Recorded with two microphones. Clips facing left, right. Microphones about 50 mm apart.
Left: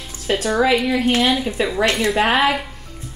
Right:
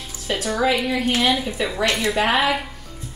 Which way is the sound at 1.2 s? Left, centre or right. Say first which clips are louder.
Left 2 dB; centre.